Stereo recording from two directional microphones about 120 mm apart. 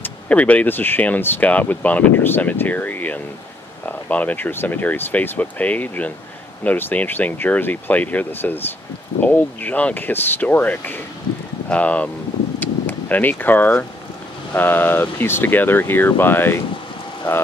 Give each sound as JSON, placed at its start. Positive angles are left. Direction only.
{"t": 0.0, "sound": "speech", "side_deg": 10}
{"t": 12.5, "sound": "vehicle", "side_deg": 15}
{"t": 14.5, "sound": "speech", "side_deg": 15}